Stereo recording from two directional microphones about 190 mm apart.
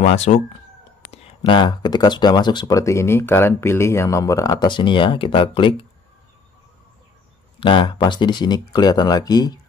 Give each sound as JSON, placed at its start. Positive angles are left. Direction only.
{"t": 0.0, "sound": "speech", "side_deg": 35}
{"t": 7.6, "sound": "speech", "side_deg": 25}